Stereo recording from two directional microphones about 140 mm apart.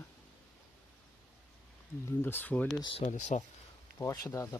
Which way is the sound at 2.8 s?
40° left (ahead or behind).